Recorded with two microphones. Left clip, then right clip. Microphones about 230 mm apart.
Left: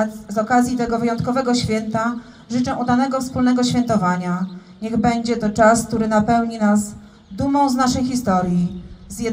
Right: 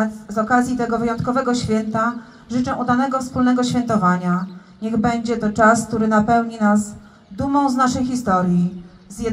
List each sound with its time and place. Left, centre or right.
0.0 s speech: left